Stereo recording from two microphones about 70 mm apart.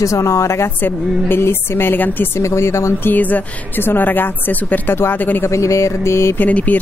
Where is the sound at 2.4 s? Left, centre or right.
Left.